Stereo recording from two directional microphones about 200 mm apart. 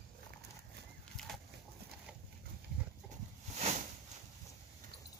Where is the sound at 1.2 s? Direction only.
5° left (ahead or behind).